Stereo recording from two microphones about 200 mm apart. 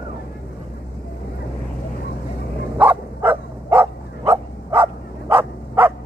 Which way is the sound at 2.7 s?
10° right (ahead or behind).